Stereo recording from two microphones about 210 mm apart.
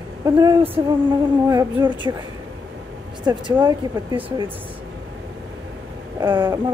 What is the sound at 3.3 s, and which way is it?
Speech, 15° right (ahead or behind).